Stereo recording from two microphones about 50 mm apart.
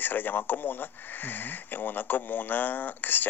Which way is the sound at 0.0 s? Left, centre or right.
Left.